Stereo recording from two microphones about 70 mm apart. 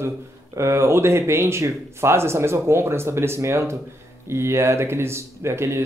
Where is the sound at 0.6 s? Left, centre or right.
Right.